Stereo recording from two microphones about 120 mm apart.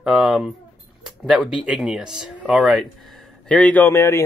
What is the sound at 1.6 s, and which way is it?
A man's voice, 5° right (ahead or behind).